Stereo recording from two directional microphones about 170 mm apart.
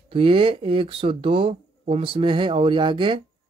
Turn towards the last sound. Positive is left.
turn(degrees=-30)  # may be behind; listen again after turning